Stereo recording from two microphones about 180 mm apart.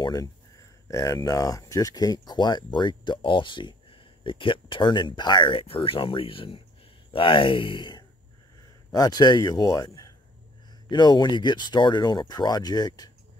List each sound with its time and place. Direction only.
0.0 s speech: 20° left (ahead or behind)